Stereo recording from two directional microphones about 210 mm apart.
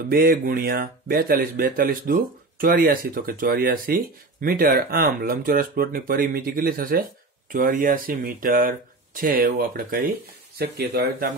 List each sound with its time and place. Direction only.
0.1 s speech: 45° right (ahead or behind)